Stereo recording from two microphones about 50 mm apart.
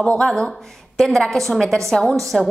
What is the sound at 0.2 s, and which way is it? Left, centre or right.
A woman's voice, centre.